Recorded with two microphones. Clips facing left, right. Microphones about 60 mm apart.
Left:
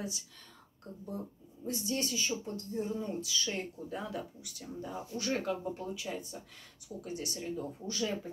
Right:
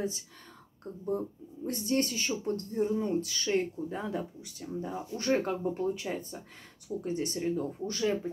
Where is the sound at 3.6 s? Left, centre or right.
Right.